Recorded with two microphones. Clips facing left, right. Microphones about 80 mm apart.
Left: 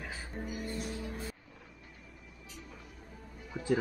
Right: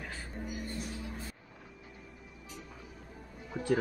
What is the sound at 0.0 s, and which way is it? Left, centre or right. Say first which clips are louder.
Music: even; centre.